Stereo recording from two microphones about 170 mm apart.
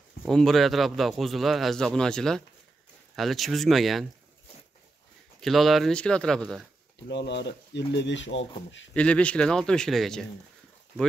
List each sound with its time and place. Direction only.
0.2 s a man's voice: centre (ahead or behind)
5.4 s a man's voice: centre (ahead or behind)
7.1 s speech: 90° left
8.9 s a man's voice: 5° left (ahead or behind)